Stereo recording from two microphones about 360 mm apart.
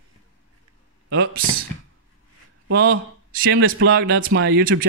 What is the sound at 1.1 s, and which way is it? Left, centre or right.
Speech, right.